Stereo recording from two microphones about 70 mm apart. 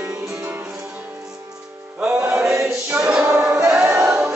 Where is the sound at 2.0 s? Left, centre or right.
Centre.